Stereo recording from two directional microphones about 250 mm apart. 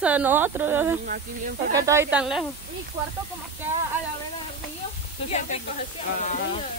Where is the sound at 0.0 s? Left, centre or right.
Centre.